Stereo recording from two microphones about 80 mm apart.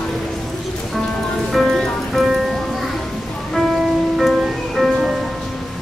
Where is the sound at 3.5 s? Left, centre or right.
Centre.